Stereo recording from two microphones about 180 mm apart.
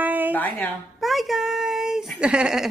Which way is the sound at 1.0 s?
Centre (ahead or behind).